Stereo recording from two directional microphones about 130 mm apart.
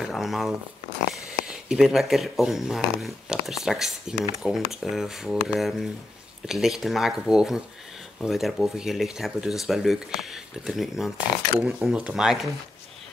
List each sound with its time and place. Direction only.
0.0 s speech: centre (ahead or behind)